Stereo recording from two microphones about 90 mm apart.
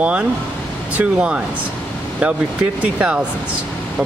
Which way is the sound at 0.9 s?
15° right (ahead or behind).